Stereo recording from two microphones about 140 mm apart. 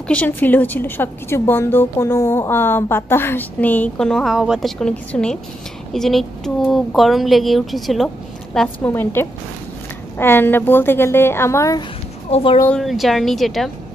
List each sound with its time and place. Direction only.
0.1 s a woman's voice: 10° left (ahead or behind)
8.5 s a woman's voice: 15° left (ahead or behind)
12.3 s speech: 45° left (ahead or behind)
12.6 s speech: centre (ahead or behind)